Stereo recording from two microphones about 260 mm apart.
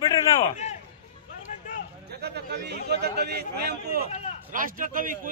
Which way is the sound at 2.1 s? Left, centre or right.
Right.